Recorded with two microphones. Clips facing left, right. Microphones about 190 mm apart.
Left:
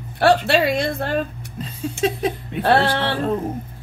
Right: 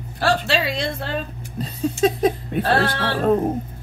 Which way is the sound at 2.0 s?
45° right (ahead or behind).